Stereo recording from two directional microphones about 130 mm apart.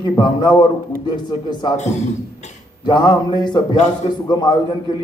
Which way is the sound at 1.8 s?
60° left (ahead or behind).